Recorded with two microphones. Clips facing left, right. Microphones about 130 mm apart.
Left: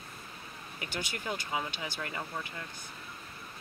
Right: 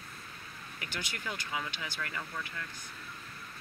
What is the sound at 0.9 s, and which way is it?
Speech, 25° left (ahead or behind).